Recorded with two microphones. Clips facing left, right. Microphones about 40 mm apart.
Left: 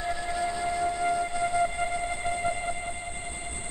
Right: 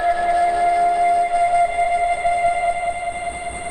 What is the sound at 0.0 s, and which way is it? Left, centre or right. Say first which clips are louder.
Music: right 13 dB; right.